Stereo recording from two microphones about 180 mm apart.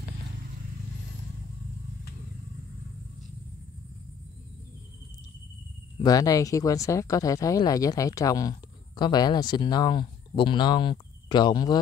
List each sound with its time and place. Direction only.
6.0 s speech: 20° left (ahead or behind)